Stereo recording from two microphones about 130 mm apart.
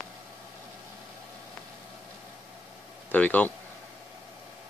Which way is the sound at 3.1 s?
10° left (ahead or behind).